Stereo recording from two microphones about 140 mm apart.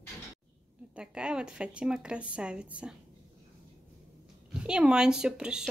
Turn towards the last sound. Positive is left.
turn(degrees=-5)  # may be behind; listen again after turning